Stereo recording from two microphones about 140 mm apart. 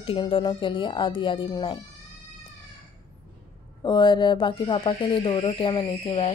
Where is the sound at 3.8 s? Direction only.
30° left (ahead or behind).